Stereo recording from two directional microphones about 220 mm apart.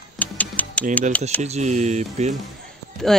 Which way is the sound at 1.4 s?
30° right (ahead or behind).